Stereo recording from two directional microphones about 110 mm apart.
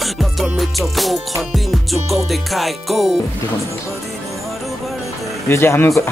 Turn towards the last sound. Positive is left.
turn(degrees=20)  # may be behind; listen again after turning